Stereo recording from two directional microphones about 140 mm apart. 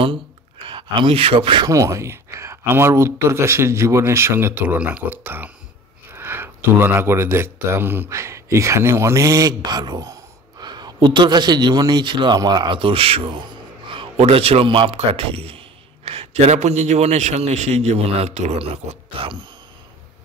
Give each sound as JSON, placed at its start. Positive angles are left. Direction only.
{"t": 0.0, "sound": "speech", "side_deg": -40}
{"t": 1.7, "sound": "a man's voice", "side_deg": -20}